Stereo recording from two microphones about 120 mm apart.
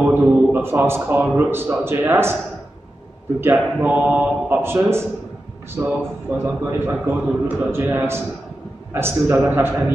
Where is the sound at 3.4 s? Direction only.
20° right (ahead or behind).